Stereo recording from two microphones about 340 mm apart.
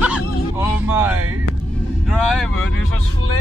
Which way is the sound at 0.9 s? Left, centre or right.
Centre.